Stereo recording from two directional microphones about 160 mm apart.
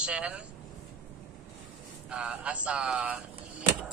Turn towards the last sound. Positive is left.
turn(degrees=-10)  # may be behind; listen again after turning